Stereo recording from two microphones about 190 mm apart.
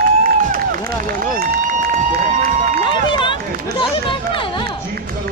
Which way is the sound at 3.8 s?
25° left (ahead or behind).